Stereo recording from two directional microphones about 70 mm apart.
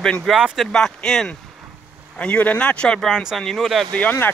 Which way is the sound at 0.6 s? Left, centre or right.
Centre.